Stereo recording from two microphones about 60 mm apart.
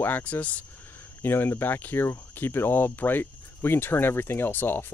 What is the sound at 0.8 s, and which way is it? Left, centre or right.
Speech, left.